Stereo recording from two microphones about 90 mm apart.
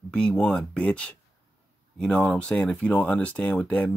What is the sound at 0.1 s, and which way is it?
Speech, 10° left (ahead or behind).